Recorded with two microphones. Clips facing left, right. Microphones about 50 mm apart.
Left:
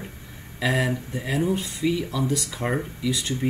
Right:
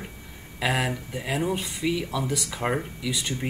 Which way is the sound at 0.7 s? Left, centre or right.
Centre.